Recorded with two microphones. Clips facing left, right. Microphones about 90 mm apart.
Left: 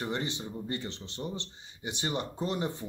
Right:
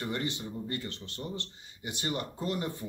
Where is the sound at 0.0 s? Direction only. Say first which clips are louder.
Even; 20° left (ahead or behind).